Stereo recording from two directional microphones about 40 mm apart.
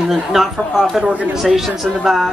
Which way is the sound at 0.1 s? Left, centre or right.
Centre.